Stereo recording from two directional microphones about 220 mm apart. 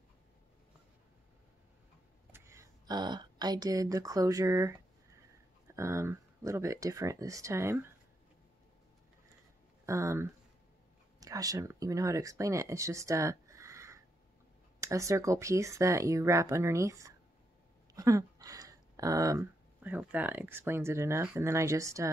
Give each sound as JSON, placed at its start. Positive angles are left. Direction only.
{"t": 2.3, "sound": "speech", "side_deg": -10}
{"t": 9.8, "sound": "speech", "side_deg": -15}